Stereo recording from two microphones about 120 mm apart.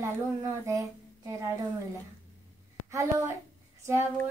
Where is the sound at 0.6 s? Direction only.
25° right (ahead or behind).